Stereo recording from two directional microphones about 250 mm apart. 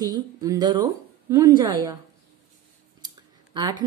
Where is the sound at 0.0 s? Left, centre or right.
Centre.